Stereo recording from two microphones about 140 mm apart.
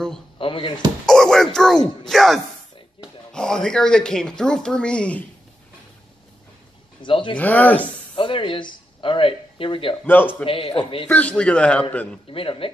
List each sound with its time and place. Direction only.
0.4 s speech: 40° left (ahead or behind)
1.0 s speech: 5° left (ahead or behind)
7.0 s a man's voice: 35° left (ahead or behind)
7.3 s a man's voice: 10° left (ahead or behind)
8.2 s speech: 40° left (ahead or behind)
10.0 s a man's voice: 15° left (ahead or behind)
10.4 s a man's voice: 40° left (ahead or behind)
11.1 s a man's voice: 10° left (ahead or behind)
12.3 s a man's voice: 40° left (ahead or behind)